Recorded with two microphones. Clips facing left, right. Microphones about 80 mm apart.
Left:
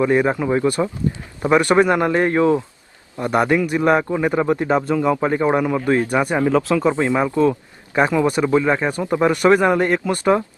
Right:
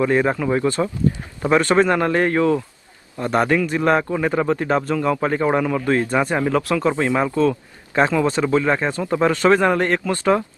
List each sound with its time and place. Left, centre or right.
0.0 s a man's voice: centre